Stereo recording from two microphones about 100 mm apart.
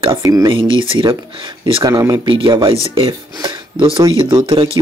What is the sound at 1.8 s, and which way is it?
Speech, 35° right (ahead or behind).